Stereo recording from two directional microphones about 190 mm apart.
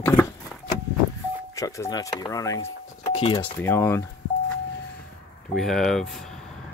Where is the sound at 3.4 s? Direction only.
10° left (ahead or behind).